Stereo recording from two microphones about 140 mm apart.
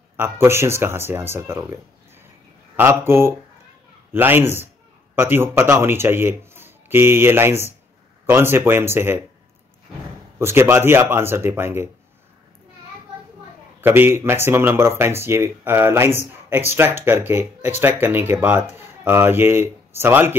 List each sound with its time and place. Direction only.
0.2 s speech: 20° right (ahead or behind)
10.4 s speech: 15° right (ahead or behind)
13.7 s speech: 15° right (ahead or behind)